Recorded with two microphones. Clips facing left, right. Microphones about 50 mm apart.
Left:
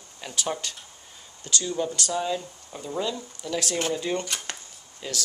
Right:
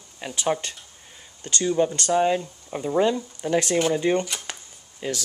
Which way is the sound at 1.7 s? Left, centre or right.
Right.